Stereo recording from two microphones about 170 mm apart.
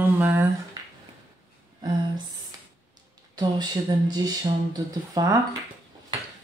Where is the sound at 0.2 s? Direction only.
15° right (ahead or behind).